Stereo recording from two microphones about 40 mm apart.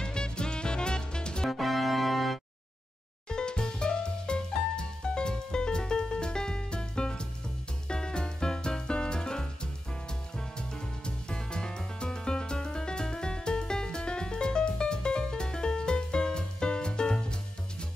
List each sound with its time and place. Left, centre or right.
0.0 s music: left
1.5 s music: centre
3.3 s music: left